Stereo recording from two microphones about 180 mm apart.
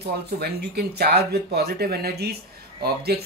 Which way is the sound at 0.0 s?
65° right (ahead or behind).